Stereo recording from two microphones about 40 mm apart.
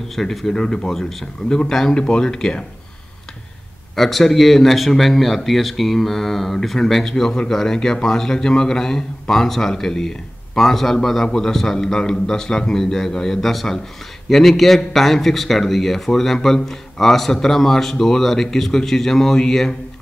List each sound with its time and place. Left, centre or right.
0.1 s speech: centre
0.6 s a man's voice: centre
2.0 s speech: left
3.9 s a man's voice: centre